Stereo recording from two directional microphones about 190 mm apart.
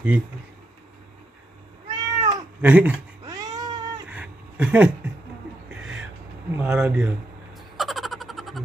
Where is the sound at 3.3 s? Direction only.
20° right (ahead or behind).